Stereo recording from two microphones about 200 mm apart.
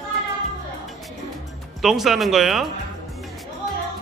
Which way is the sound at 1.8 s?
Centre (ahead or behind).